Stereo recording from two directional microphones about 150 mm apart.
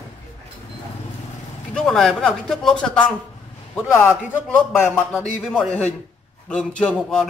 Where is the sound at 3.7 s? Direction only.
15° left (ahead or behind).